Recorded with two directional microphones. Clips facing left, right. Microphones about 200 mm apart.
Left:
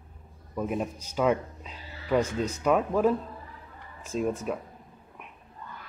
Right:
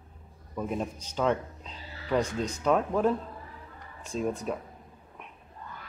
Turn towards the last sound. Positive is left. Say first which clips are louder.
# left 2 dB
turn(degrees=5)  # may be behind; listen again after turning